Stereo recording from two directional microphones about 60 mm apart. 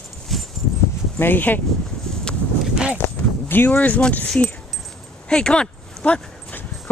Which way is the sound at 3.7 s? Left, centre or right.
Left.